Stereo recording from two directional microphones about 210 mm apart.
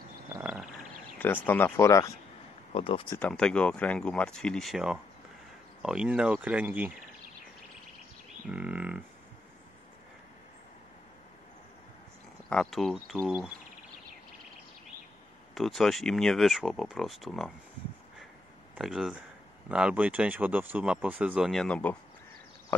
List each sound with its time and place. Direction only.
0.3 s a sound: 5° right (ahead or behind)
1.1 s speech: 10° left (ahead or behind)
2.7 s speech: 25° left (ahead or behind)
3.2 s speech: 5° left (ahead or behind)
8.5 s a sound: 5° right (ahead or behind)
12.4 s speech: centre (ahead or behind)
15.5 s speech: centre (ahead or behind)
18.8 s speech: centre (ahead or behind)